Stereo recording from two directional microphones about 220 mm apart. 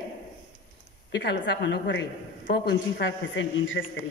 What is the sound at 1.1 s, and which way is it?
A woman's voice, 50° left (ahead or behind).